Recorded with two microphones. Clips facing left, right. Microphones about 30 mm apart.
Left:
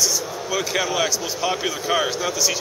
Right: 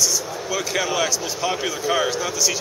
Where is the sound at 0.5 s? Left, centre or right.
Centre.